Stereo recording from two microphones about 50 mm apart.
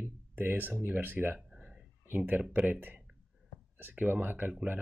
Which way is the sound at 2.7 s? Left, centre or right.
Right.